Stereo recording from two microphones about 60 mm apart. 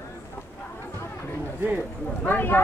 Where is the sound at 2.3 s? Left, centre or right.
Left.